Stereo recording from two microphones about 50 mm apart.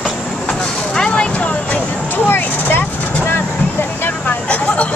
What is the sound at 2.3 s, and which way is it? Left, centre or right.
Vehicle, left.